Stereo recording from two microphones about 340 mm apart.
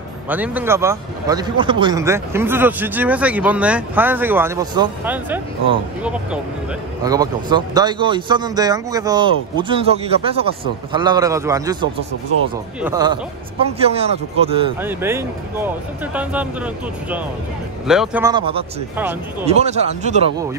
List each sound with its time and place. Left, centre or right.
0.3 s a man's voice: centre
14.8 s a man's voice: centre
19.4 s speech: centre